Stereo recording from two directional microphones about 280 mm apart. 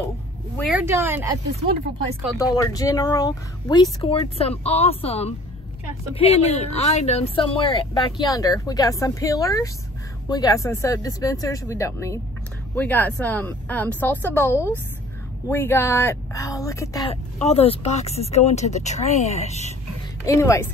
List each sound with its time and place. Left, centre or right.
0.6 s speech: centre
2.3 s speech: centre
20.2 s speech: centre